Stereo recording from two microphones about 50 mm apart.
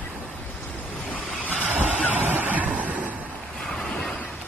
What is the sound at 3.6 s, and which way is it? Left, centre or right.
Waves, centre.